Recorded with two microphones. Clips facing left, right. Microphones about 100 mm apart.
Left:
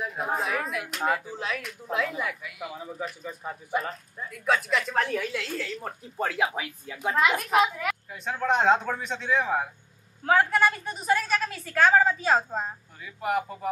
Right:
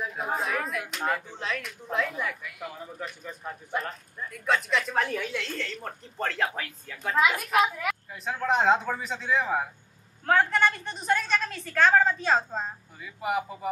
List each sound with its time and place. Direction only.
0.0 s speech: centre (ahead or behind)
7.6 s speech: centre (ahead or behind)